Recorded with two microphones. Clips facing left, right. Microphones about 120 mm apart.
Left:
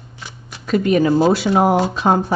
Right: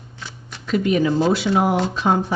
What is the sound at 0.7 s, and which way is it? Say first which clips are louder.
Speech: left 3 dB; 45° left (ahead or behind).